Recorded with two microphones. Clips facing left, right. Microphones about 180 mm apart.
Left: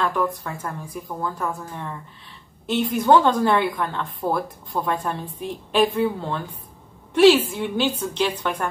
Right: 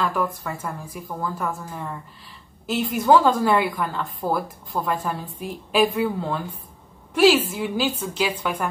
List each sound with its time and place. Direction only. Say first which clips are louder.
0.0 s a woman's voice: left 1 dB; 5° right (ahead or behind)